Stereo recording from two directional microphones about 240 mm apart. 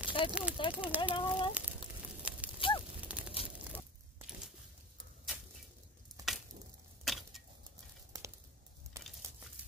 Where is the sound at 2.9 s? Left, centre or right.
Centre.